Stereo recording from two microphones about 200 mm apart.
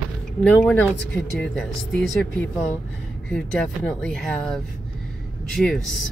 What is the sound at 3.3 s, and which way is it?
Speech, 5° left (ahead or behind).